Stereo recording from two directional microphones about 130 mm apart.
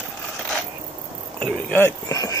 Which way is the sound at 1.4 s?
10° left (ahead or behind).